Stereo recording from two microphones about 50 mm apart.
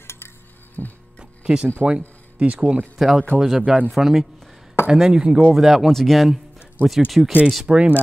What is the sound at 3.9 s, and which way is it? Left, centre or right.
Speech, centre.